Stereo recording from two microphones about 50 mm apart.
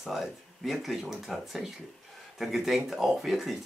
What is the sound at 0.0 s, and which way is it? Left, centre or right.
Speech, centre.